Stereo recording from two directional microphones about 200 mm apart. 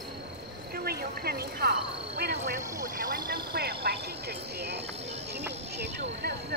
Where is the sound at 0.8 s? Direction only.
50° right (ahead or behind).